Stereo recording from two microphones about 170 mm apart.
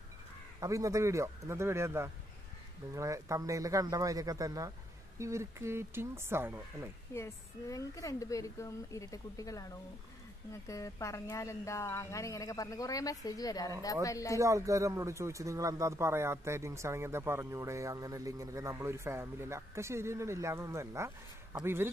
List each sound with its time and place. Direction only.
0.6 s speech: 20° right (ahead or behind)
7.2 s speech: 20° left (ahead or behind)
14.4 s speech: 20° right (ahead or behind)